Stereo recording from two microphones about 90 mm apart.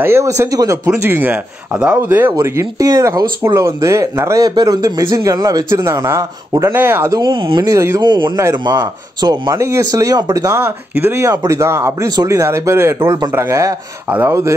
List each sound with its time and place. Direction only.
0.0 s speech: 25° right (ahead or behind)
2.6 s speech: 40° right (ahead or behind)
4.5 s speech: 45° right (ahead or behind)
6.7 s speech: 25° right (ahead or behind)
7.1 s speech: 55° right (ahead or behind)
7.6 s speech: 30° right (ahead or behind)
8.0 s speech: 55° right (ahead or behind)
9.5 s speech: 30° right (ahead or behind)
14.0 s chopping: 15° right (ahead or behind)